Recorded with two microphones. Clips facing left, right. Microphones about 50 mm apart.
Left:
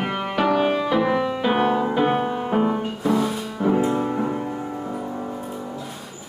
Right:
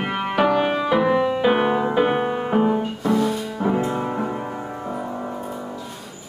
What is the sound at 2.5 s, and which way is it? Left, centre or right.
Music, centre.